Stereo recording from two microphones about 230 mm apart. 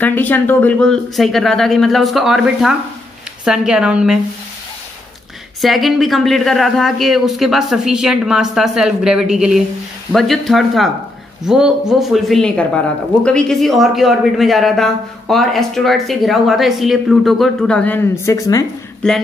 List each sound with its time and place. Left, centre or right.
0.0 s speech: centre
5.6 s speech: centre
19.0 s speech: centre